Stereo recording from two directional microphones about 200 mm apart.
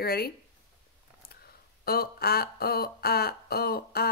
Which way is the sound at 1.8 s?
50° left (ahead or behind).